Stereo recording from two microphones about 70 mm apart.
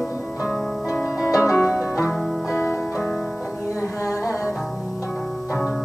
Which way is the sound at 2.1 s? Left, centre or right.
Centre.